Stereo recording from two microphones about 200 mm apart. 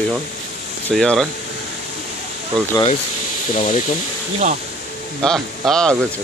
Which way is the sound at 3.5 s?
35° left (ahead or behind).